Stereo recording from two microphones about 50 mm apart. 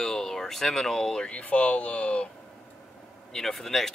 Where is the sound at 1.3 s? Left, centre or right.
Left.